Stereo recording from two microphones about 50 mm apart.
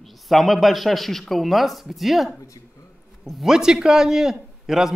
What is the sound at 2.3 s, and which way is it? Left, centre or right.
Speech, left.